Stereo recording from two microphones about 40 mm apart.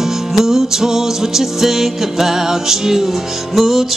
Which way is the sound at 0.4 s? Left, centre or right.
Centre.